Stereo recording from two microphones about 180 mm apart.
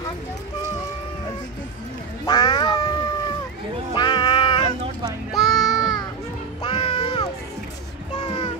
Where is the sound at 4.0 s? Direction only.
25° left (ahead or behind).